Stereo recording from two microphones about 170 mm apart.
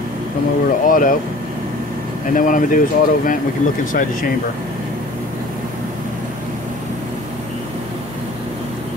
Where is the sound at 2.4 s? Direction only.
50° left (ahead or behind).